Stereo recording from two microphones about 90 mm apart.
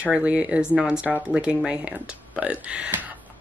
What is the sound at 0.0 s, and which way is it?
Speech, 15° right (ahead or behind).